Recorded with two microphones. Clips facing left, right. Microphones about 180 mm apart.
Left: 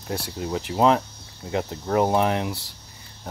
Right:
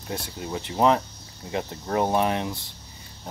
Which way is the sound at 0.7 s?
15° left (ahead or behind).